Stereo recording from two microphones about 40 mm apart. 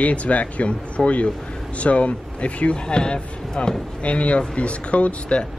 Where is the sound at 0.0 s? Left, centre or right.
Left.